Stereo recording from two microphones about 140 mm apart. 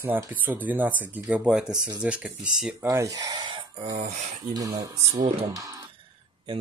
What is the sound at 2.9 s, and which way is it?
Speech, 25° right (ahead or behind).